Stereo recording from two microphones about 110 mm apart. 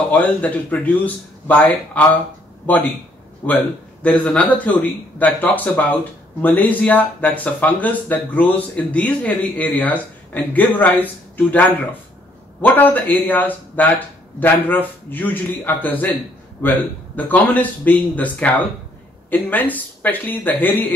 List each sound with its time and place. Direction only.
0.1 s speech: 15° left (ahead or behind)
12.6 s speech: 15° left (ahead or behind)